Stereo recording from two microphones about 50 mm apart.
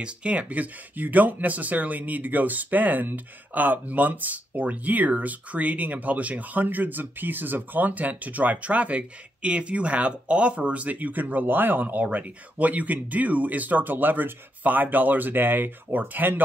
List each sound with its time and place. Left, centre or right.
0.0 s speech: right